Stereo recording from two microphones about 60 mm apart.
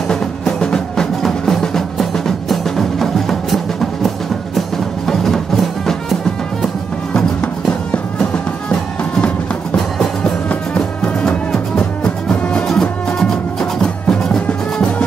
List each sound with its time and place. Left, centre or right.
0.1 s music: centre
7.2 s music: centre
11.2 s music: centre